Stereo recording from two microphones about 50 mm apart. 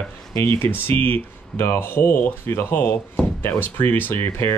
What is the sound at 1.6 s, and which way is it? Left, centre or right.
Speech, left.